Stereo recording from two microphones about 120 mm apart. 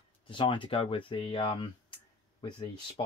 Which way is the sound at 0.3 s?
45° left (ahead or behind).